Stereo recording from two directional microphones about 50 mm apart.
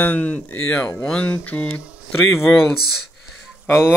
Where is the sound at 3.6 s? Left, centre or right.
Left.